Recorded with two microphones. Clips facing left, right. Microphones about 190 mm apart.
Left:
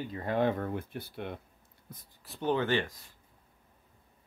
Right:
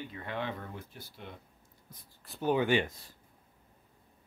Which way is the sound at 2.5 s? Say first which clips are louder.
Right 1 dB; 15° right (ahead or behind).